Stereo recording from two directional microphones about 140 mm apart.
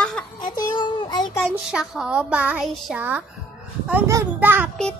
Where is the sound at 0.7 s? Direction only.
35° left (ahead or behind).